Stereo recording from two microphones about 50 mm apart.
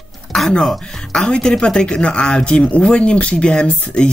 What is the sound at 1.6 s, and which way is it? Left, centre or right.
Speech, centre.